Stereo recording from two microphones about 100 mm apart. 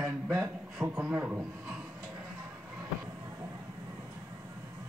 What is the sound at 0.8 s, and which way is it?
Speech, 15° right (ahead or behind).